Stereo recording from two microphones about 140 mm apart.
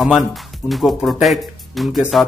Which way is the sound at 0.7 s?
Centre (ahead or behind).